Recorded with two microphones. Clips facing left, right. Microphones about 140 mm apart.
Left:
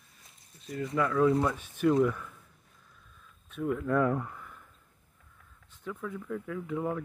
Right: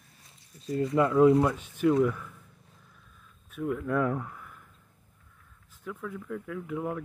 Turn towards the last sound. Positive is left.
turn(degrees=0)  # may be behind; listen again after turning